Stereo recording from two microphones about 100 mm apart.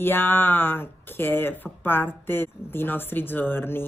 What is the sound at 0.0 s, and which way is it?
Speech, 20° left (ahead or behind).